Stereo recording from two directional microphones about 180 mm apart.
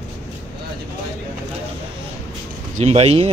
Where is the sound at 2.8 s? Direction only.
35° right (ahead or behind).